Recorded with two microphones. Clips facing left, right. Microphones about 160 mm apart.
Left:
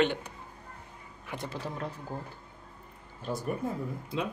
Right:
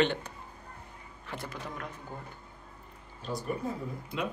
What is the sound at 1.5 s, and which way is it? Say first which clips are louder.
Speech: left 4 dB; 30° left (ahead or behind).